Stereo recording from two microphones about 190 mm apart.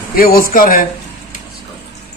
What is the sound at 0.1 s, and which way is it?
Speech, 50° left (ahead or behind).